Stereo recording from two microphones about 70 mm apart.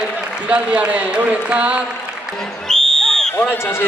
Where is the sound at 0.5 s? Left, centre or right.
Centre.